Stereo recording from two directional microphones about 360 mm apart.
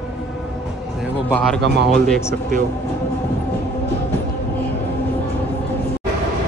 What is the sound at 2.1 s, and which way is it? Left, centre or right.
Speech, centre.